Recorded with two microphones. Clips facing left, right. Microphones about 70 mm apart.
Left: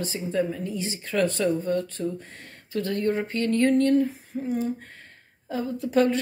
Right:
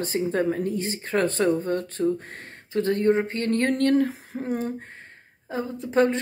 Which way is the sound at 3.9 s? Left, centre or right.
Right.